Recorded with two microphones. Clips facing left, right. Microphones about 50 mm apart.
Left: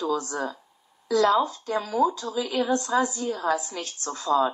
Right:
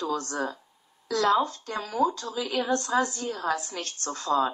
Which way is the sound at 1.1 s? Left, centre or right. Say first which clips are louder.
Left 3 dB; right.